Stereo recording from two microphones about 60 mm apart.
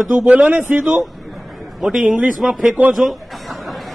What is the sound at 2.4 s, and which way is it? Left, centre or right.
Speech, centre.